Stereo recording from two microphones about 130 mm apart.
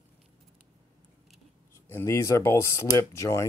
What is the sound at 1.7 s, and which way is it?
Speech, 20° left (ahead or behind).